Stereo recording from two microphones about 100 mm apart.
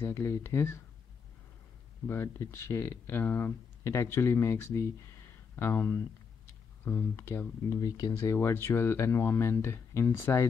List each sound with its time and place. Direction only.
0.0 s speech: 25° left (ahead or behind)
2.0 s speech: 25° left (ahead or behind)
7.7 s speech: 35° left (ahead or behind)